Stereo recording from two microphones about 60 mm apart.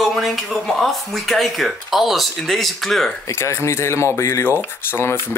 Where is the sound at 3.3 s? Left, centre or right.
Left.